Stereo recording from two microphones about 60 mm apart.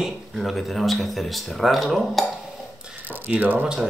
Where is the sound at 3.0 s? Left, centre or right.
Right.